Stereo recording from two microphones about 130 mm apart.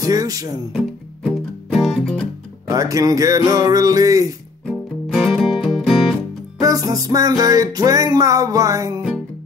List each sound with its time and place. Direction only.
0.0 s music: 25° right (ahead or behind)
1.7 s music: centre (ahead or behind)
2.7 s music: 25° right (ahead or behind)
4.6 s music: centre (ahead or behind)
6.6 s music: 25° right (ahead or behind)